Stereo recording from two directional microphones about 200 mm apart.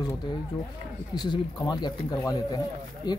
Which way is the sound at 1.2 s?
20° left (ahead or behind).